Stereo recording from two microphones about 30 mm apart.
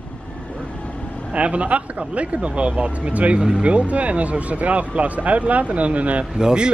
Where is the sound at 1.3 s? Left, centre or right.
Right.